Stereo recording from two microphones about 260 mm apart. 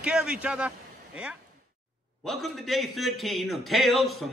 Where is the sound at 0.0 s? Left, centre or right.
Centre.